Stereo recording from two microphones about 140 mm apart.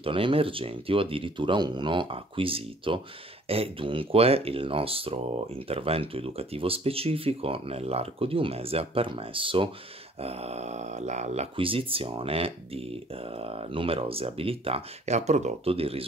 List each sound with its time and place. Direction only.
0.0 s speech: 40° right (ahead or behind); by 11.4 s 55° right (ahead or behind)
11.5 s speech: 40° right (ahead or behind)